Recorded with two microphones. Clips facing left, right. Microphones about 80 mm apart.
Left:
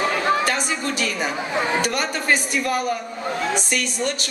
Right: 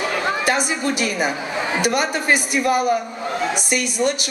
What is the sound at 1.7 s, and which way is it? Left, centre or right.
Speech, centre.